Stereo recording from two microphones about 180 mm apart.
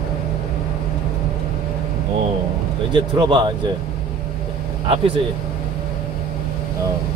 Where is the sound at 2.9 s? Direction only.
25° right (ahead or behind).